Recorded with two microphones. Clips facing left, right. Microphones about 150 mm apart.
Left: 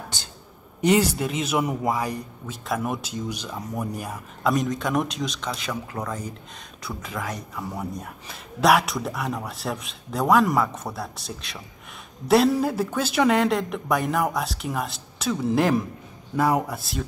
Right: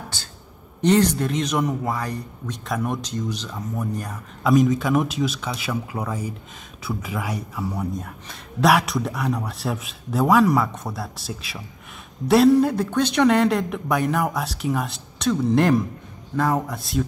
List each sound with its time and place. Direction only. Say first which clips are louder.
0.7 s speech: right 2 dB; 10° left (ahead or behind)
4.4 s speech: right 6 dB; centre (ahead or behind)